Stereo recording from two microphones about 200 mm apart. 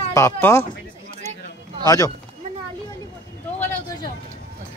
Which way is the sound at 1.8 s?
15° left (ahead or behind).